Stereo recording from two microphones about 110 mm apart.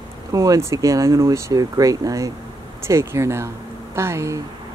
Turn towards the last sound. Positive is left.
turn(degrees=-25)  # may be behind; listen again after turning